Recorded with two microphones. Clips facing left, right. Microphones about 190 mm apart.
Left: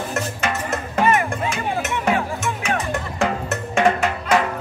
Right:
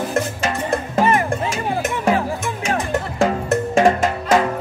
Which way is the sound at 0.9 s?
35° right (ahead or behind).